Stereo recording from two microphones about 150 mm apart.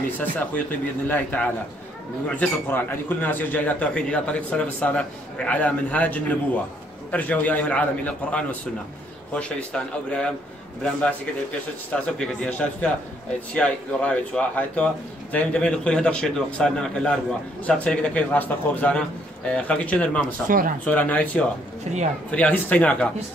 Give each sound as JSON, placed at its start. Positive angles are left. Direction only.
{"t": 0.2, "sound": "a man's voice", "side_deg": 10}
{"t": 11.9, "sound": "a man's voice", "side_deg": 10}
{"t": 20.4, "sound": "speech", "side_deg": -65}
{"t": 20.8, "sound": "a man's voice", "side_deg": 10}